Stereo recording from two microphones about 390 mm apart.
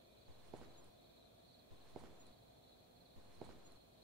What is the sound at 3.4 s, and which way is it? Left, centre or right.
Walk, centre.